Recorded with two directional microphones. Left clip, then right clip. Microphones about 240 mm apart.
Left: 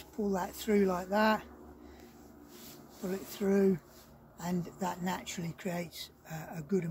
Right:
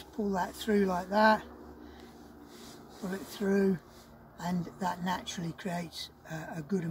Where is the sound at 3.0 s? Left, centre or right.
Left.